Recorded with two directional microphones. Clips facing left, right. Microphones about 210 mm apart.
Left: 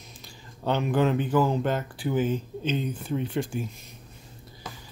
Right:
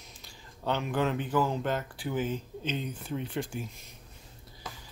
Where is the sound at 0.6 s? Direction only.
25° left (ahead or behind).